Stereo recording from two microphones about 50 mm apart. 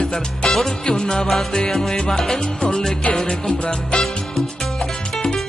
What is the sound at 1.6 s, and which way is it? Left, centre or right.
Salsa music, centre.